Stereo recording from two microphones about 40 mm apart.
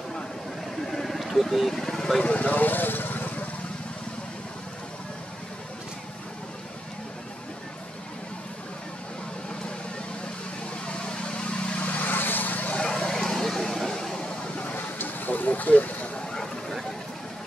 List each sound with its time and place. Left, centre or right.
0.8 s a sound: centre
1.7 s speech: centre
2.2 s speech: left
10.9 s vehicle: left
11.8 s vehicle: left
12.8 s vehicle: centre
14.6 s vehicle: left